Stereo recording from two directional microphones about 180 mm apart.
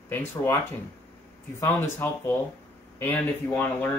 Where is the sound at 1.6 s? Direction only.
15° left (ahead or behind).